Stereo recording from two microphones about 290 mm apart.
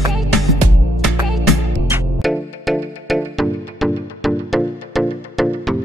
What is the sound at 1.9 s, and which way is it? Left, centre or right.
Music, centre.